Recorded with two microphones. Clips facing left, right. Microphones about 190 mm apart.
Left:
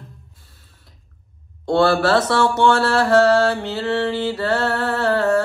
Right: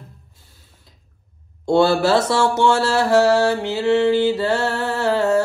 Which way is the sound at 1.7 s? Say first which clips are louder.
Right 1 dB; 20° right (ahead or behind).